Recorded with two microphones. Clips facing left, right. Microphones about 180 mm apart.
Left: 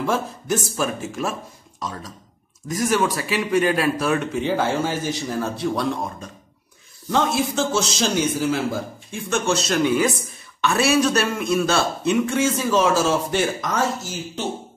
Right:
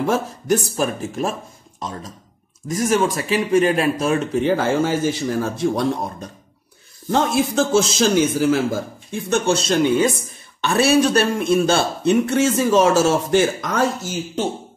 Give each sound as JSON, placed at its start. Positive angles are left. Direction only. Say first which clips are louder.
{"t": 0.1, "sound": "a man's voice", "louder": "right 4 dB", "side_deg": -40}
{"t": 4.5, "sound": "speech", "louder": "right 3 dB", "side_deg": -45}
{"t": 7.3, "sound": "a man's voice", "louder": "right 5 dB", "side_deg": -50}
{"t": 12.5, "sound": "speech", "louder": "right 6 dB", "side_deg": -45}